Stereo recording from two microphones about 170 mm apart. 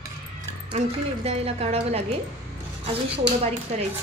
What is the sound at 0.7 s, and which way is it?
Speech, 35° right (ahead or behind).